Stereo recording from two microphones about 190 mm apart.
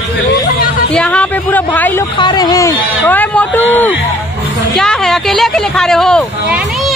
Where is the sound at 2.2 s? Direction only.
20° left (ahead or behind).